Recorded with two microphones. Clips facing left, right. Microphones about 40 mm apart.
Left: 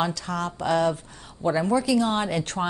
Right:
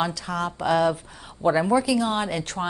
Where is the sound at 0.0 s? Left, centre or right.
Centre.